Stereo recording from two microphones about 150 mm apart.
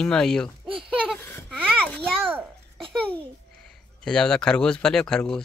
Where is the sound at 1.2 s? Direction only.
15° left (ahead or behind).